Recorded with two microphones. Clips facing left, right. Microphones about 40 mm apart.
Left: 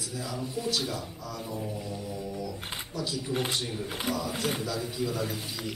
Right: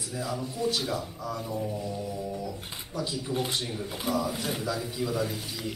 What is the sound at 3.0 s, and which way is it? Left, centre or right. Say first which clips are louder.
Speech: right 2 dB; centre.